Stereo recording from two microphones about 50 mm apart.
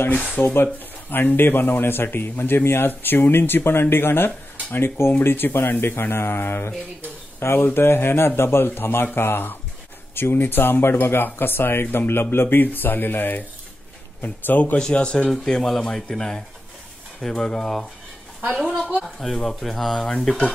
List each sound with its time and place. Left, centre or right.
0.4 s a man's voice: left
14.8 s speech: centre
15.2 s speech: centre